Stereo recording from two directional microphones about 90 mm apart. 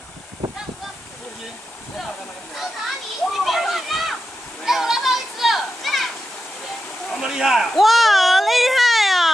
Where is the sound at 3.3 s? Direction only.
Centre (ahead or behind).